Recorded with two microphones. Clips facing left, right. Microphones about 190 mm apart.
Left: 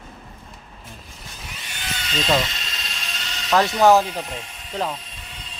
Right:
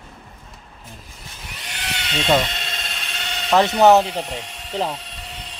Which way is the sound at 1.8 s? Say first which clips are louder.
Right 1 dB; 70° right (ahead or behind).